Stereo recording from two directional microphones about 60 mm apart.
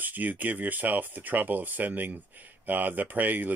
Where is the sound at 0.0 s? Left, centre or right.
Right.